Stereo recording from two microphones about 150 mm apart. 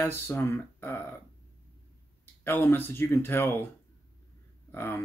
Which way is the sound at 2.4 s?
15° left (ahead or behind).